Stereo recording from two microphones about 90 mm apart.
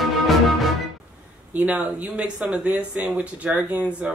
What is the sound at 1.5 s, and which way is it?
Speech, 15° right (ahead or behind).